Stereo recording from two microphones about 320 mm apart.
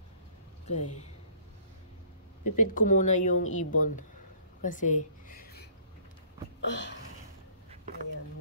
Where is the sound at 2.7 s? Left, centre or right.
Left.